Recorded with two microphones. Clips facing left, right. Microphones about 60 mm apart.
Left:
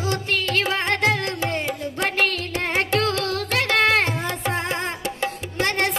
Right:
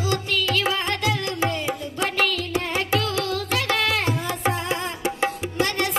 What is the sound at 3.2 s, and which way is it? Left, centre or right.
Carnatic music, left.